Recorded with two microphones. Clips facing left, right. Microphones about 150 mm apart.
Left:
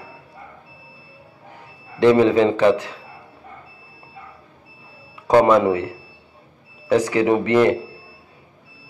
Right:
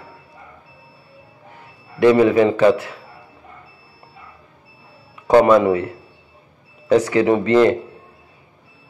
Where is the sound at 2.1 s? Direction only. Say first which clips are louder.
Right 1 dB; 20° left (ahead or behind).